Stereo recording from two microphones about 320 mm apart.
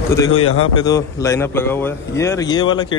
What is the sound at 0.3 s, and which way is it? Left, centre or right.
Speech, left.